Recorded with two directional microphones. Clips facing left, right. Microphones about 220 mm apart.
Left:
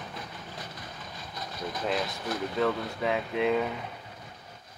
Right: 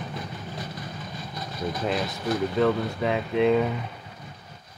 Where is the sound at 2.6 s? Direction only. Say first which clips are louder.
Right 4 dB; centre (ahead or behind).